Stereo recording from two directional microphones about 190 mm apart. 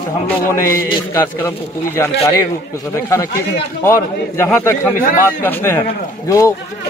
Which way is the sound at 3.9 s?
15° left (ahead or behind).